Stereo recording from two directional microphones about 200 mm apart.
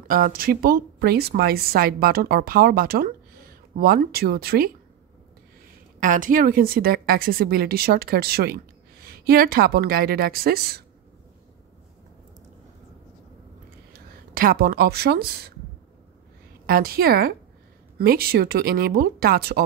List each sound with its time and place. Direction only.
0.1 s a woman's voice: 45° right (ahead or behind)
5.9 s a woman's voice: 40° right (ahead or behind)
13.9 s speech: 45° right (ahead or behind)
16.6 s a woman's voice: 50° right (ahead or behind)